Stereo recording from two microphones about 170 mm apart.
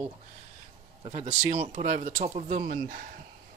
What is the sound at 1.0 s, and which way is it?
Speech, 40° right (ahead or behind).